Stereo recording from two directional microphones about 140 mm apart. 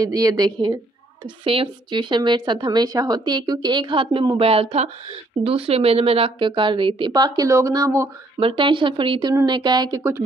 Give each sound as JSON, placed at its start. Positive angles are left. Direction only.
{"t": 0.0, "sound": "a woman's voice", "side_deg": -25}
{"t": 8.4, "sound": "a woman's voice", "side_deg": -35}